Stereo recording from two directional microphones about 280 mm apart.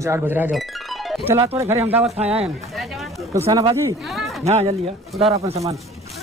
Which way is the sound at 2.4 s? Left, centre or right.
Centre.